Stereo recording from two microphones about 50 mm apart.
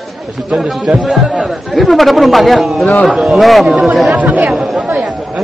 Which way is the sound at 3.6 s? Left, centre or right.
Right.